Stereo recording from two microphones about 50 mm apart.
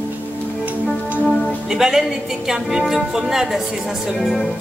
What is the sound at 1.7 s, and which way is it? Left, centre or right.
A woman's voice, centre.